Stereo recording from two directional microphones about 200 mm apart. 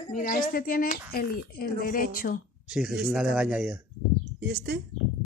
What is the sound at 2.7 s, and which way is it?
Speech, 5° right (ahead or behind).